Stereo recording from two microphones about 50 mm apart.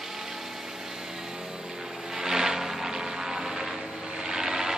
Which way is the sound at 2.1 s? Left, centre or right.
Centre.